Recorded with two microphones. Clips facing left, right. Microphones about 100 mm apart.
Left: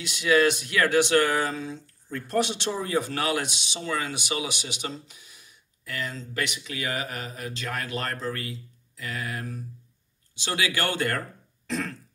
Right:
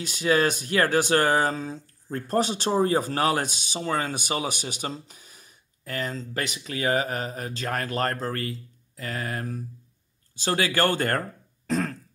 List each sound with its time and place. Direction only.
0.0 s speech: 40° right (ahead or behind)